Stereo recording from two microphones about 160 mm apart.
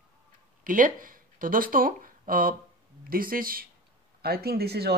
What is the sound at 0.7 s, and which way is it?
Speech, 60° right (ahead or behind).